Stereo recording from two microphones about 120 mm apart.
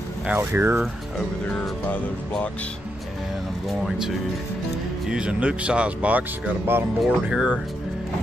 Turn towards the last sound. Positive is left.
turn(degrees=-5)  # may be behind; listen again after turning